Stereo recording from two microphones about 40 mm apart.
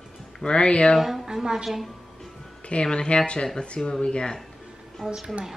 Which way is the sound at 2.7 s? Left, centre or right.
Left.